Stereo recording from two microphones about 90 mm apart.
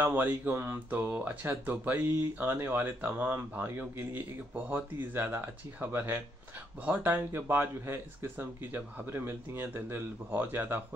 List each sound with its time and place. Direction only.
0.0 s speech: 20° right (ahead or behind)